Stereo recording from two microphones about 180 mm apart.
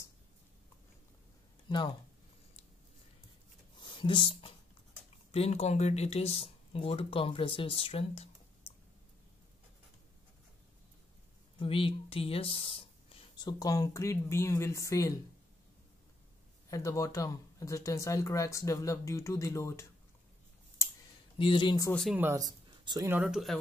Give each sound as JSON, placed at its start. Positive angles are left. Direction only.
{"t": 3.7, "sound": "a sound", "side_deg": 25}
{"t": 5.3, "sound": "speech", "side_deg": 35}
{"t": 11.6, "sound": "speech", "side_deg": 30}
{"t": 16.7, "sound": "speech", "side_deg": 20}
{"t": 21.4, "sound": "speech", "side_deg": 25}
{"t": 22.1, "sound": "speech", "side_deg": -15}
{"t": 23.2, "sound": "speech", "side_deg": 0}